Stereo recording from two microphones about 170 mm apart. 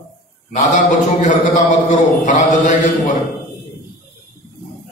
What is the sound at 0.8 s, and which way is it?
A man's voice, 45° left (ahead or behind).